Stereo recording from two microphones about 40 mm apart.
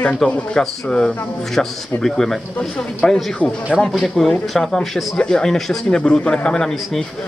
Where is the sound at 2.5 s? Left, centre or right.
Left.